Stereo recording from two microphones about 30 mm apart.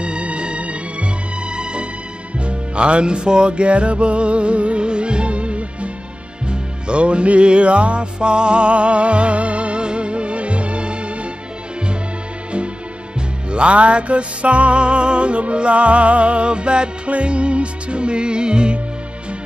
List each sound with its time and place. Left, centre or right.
0.0 s music: right
13.5 s music: right